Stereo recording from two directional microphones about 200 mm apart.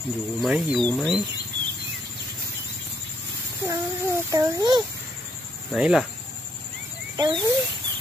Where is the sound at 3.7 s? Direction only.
15° right (ahead or behind).